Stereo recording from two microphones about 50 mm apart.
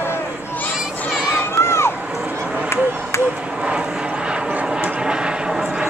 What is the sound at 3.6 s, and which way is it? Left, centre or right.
Vehicle, right.